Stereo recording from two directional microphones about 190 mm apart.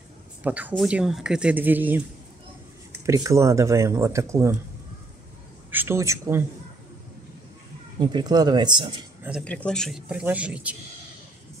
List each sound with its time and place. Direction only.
0.4 s a woman's voice: 10° right (ahead or behind)
5.7 s a woman's voice: 10° right (ahead or behind)
8.0 s speech: 20° right (ahead or behind)
9.4 s speech: 5° left (ahead or behind)